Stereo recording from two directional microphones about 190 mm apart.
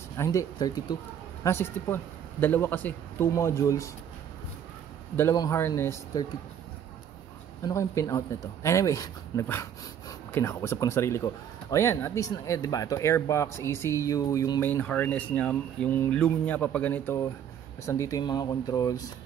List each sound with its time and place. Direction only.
0.2 s speech: 15° left (ahead or behind)
5.1 s speech: 15° left (ahead or behind)
7.6 s speech: 15° left (ahead or behind)